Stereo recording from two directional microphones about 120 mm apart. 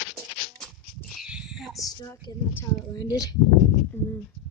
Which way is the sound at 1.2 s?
5° right (ahead or behind).